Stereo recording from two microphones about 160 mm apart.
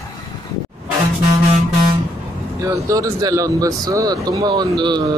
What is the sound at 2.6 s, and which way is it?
Speech, 20° right (ahead or behind).